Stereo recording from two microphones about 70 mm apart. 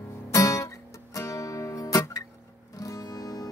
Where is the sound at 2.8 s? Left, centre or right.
Left.